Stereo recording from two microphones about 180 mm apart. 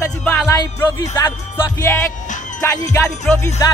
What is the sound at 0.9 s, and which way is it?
Music, 20° left (ahead or behind).